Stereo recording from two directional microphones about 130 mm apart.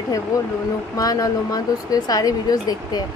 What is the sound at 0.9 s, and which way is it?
Speech, 25° left (ahead or behind).